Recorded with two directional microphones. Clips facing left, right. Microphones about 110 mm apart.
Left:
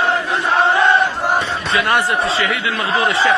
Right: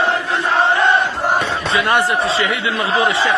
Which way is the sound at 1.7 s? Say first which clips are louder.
Even; 25° right (ahead or behind).